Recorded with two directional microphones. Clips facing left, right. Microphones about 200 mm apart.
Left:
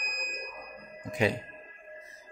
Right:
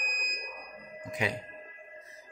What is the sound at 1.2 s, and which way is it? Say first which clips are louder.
Speech: left 6 dB; 30° left (ahead or behind).